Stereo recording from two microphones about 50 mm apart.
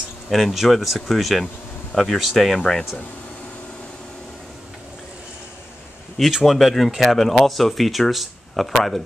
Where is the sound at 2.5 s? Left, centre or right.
Centre.